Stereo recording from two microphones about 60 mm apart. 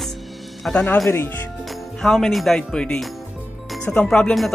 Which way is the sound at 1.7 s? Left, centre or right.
Centre.